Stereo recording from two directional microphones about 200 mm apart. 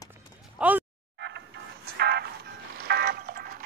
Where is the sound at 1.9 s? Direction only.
55° right (ahead or behind).